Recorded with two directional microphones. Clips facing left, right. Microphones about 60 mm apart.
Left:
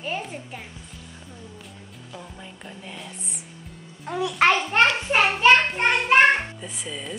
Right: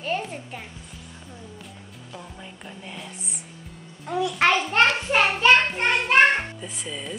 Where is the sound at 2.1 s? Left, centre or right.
Centre.